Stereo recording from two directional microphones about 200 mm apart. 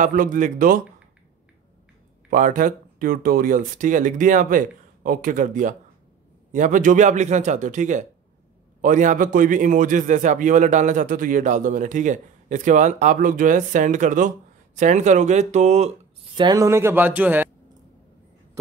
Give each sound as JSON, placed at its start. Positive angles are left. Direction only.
{"t": 0.0, "sound": "speech", "side_deg": -40}
{"t": 2.2, "sound": "a man's voice", "side_deg": -40}
{"t": 16.3, "sound": "speech", "side_deg": -20}